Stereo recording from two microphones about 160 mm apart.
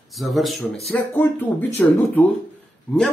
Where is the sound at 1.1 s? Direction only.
10° left (ahead or behind).